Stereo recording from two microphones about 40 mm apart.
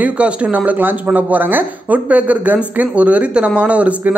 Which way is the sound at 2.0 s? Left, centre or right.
Right.